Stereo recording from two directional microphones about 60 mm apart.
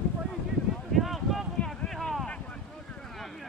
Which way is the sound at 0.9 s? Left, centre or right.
Centre.